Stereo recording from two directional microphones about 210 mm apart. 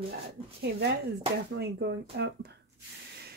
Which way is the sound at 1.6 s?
50° right (ahead or behind).